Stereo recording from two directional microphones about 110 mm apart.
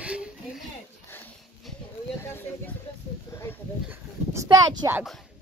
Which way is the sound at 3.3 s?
25° left (ahead or behind).